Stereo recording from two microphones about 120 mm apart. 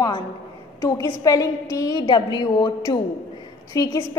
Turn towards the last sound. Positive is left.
turn(degrees=30)  # may be behind; listen again after turning